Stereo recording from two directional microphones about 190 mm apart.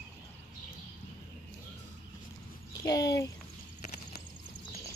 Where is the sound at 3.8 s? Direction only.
55° left (ahead or behind).